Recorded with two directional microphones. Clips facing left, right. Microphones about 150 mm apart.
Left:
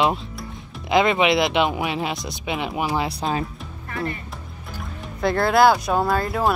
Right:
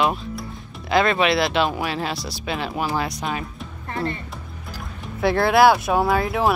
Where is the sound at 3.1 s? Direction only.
30° left (ahead or behind).